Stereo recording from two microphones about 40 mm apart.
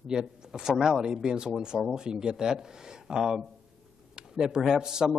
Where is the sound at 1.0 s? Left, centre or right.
Centre.